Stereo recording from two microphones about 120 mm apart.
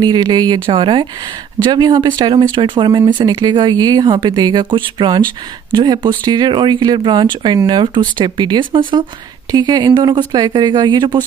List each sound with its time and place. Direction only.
0.0 s speech: 35° right (ahead or behind)